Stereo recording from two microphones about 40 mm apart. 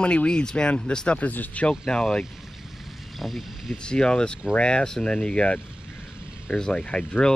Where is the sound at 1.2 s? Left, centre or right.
Left.